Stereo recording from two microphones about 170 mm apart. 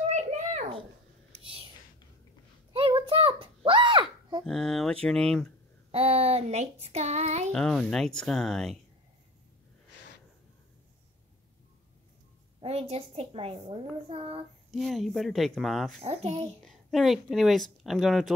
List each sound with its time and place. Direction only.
0.1 s a sound: 45° right (ahead or behind)
2.7 s a sound: 30° right (ahead or behind)
4.5 s speech: 5° left (ahead or behind)
5.9 s child singing: 35° right (ahead or behind)
7.5 s speech: 5° left (ahead or behind)
12.5 s a woman's voice: 35° right (ahead or behind)
14.7 s speech: centre (ahead or behind)
16.0 s a woman's voice: 35° right (ahead or behind)
16.6 s speech: centre (ahead or behind)